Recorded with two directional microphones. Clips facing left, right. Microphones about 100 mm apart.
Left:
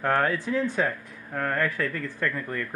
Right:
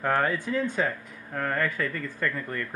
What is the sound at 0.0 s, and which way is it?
A man's voice, centre (ahead or behind).